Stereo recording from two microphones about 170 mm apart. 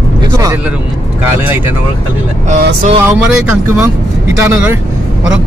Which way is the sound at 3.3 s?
5° right (ahead or behind).